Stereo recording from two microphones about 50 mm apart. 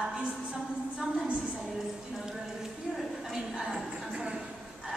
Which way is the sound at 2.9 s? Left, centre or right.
Centre.